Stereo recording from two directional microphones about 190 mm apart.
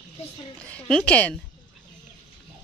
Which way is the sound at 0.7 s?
5° left (ahead or behind).